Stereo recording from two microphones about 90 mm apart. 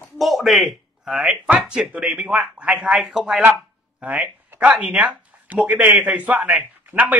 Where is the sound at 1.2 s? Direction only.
15° right (ahead or behind).